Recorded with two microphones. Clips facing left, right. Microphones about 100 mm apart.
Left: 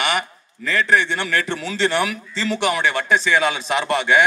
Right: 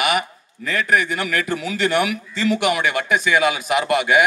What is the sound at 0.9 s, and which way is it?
Speech, 30° left (ahead or behind).